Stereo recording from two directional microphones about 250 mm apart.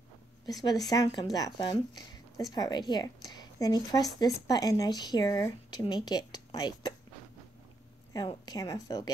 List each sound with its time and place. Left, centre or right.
0.7 s a woman's voice: centre
8.1 s speech: centre